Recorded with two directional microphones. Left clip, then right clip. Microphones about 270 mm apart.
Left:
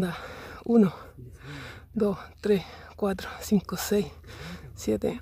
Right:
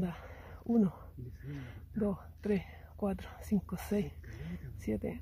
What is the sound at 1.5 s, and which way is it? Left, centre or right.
Speech, left.